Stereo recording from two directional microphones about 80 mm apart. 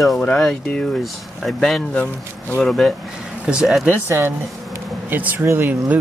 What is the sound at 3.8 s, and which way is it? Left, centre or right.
Speech, right.